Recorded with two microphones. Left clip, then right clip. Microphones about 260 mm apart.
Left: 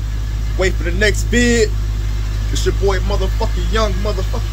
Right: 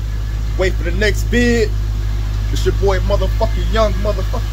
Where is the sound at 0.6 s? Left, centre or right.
Centre.